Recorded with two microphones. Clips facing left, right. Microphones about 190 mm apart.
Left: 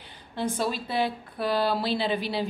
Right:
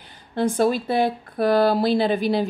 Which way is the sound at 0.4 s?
50° right (ahead or behind).